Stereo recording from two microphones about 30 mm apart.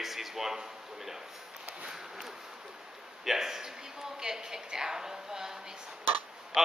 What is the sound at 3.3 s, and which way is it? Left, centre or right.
A man's voice, centre.